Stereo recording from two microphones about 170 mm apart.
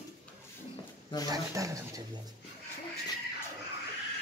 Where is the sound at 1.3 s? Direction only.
20° right (ahead or behind).